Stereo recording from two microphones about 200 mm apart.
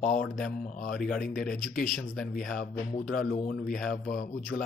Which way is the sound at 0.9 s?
5° left (ahead or behind).